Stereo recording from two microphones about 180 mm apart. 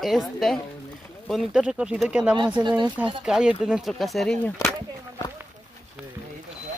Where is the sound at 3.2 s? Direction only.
5° right (ahead or behind).